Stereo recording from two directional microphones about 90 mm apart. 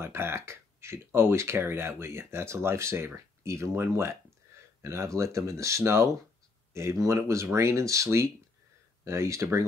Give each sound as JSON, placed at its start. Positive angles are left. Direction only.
{"t": 0.0, "sound": "speech", "side_deg": -25}